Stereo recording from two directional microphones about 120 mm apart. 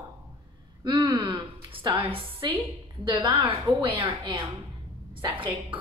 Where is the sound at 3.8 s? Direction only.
45° right (ahead or behind).